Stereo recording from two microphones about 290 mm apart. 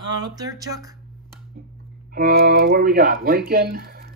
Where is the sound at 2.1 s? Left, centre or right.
Right.